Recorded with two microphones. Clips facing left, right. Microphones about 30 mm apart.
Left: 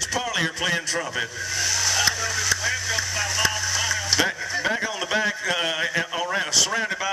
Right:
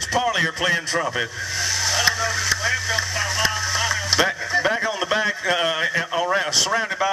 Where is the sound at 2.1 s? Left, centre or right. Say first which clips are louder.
Right 3 dB; right.